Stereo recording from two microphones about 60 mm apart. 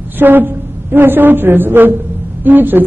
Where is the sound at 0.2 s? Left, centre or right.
Right.